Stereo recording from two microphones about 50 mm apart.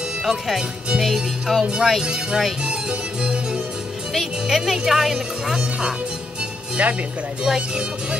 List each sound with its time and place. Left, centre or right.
0.2 s speech: centre
1.0 s music: centre
1.6 s speech: centre
4.1 s speech: centre
6.8 s speech: right
7.4 s speech: centre